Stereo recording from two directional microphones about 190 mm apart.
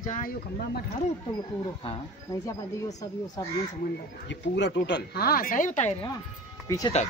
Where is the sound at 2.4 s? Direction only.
15° left (ahead or behind).